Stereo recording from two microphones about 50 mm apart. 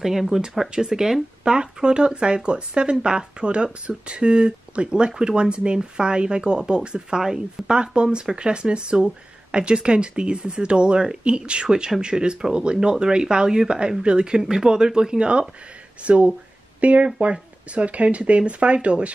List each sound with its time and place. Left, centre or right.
0.0 s speech: centre; by 19.1 s right